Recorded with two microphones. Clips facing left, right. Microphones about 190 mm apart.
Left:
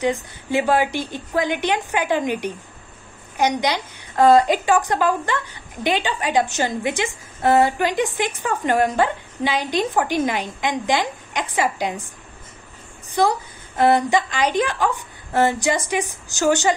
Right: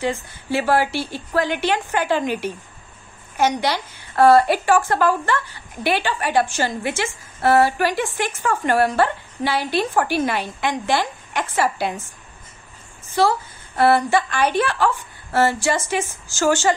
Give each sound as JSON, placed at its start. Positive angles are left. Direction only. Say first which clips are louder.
{"t": 0.0, "sound": "a woman's voice", "louder": "left 2 dB", "side_deg": 15}
{"t": 13.1, "sound": "a woman's voice", "louder": "right 1 dB", "side_deg": 15}